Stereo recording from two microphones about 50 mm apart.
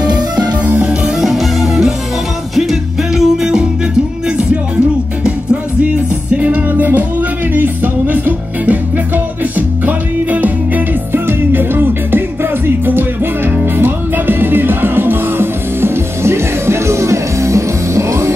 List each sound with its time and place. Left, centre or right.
1.2 s music: centre
5.2 s music: right
6.7 s music: right
11.2 s music: right